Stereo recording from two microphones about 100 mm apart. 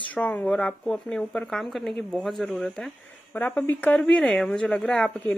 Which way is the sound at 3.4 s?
15° left (ahead or behind).